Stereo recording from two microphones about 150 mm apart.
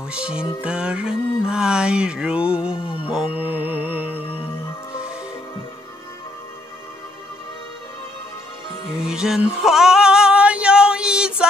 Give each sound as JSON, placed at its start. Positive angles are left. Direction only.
{"t": 0.1, "sound": "music", "side_deg": -5}
{"t": 2.7, "sound": "music", "side_deg": 35}
{"t": 3.3, "sound": "music", "side_deg": -10}
{"t": 9.0, "sound": "female singing", "side_deg": -5}